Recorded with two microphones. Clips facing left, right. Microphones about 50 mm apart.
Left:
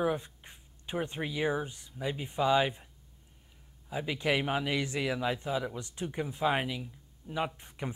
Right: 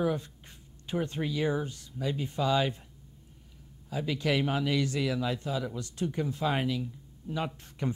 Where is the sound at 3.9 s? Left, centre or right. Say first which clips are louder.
Right 1 dB; centre.